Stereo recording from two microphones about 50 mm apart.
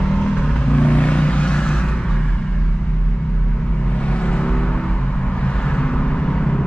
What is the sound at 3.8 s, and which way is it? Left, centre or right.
Vehicle, left.